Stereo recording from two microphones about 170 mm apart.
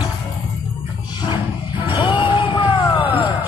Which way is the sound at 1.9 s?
30° left (ahead or behind).